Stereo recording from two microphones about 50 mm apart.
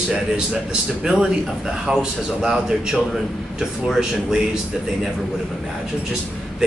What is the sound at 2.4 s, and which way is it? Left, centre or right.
A man's voice, centre.